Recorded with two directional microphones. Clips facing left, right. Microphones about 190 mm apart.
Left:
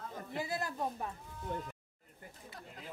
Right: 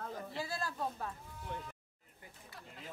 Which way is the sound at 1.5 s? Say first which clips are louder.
Left 4 dB; 45° left (ahead or behind).